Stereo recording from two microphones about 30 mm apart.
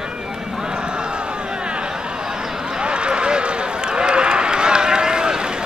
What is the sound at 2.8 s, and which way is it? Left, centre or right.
Run, right.